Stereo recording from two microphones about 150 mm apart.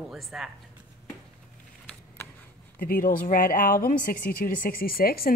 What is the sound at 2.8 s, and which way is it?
Speech, 75° left (ahead or behind).